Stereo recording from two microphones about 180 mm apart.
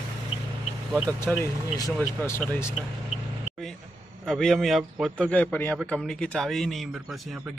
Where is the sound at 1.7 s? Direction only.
20° left (ahead or behind).